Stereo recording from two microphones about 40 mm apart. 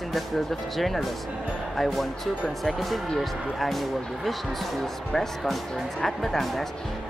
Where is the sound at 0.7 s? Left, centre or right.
Centre.